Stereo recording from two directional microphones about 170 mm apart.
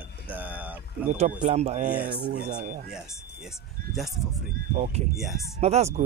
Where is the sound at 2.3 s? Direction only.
50° right (ahead or behind).